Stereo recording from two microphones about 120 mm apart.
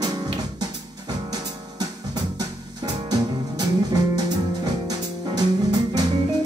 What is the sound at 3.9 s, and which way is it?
Music, 35° right (ahead or behind).